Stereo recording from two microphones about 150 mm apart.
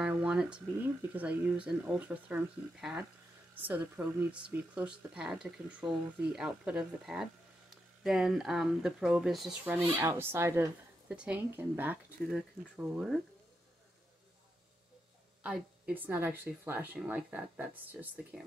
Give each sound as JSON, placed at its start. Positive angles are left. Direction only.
{"t": 0.0, "sound": "a sound", "side_deg": -10}
{"t": 1.1, "sound": "speech", "side_deg": -10}
{"t": 9.9, "sound": "a woman's voice", "side_deg": -15}
{"t": 15.4, "sound": "speech", "side_deg": -5}